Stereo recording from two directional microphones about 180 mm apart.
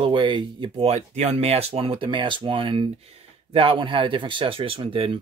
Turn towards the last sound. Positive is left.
turn(degrees=-30)  # may be behind; listen again after turning